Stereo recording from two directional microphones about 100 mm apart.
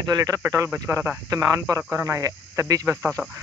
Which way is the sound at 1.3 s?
35° right (ahead or behind).